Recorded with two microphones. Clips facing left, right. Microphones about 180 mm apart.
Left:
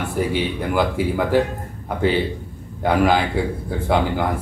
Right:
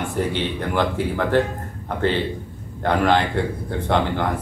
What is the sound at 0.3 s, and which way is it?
Speech, 5° left (ahead or behind).